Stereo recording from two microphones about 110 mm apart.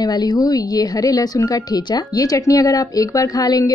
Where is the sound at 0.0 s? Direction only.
40° left (ahead or behind).